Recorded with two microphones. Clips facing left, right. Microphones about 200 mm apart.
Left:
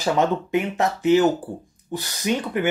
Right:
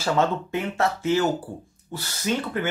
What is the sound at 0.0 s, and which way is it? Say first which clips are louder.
Speech: left 2 dB; 15° left (ahead or behind).